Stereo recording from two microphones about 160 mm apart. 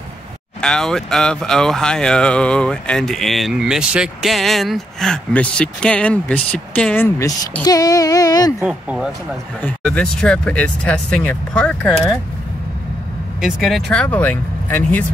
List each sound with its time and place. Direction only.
0.6 s speech: 5° left (ahead or behind)
7.2 s speech: 20° left (ahead or behind)
8.5 s speech: 5° right (ahead or behind)
9.6 s speech: 10° left (ahead or behind)
13.4 s speech: centre (ahead or behind)